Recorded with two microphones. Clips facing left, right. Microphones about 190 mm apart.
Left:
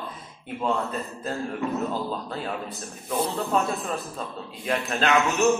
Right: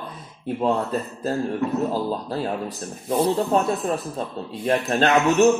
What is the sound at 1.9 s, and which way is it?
Speech, 35° right (ahead or behind).